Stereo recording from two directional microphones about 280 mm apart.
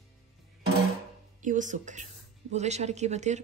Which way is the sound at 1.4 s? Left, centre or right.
Right.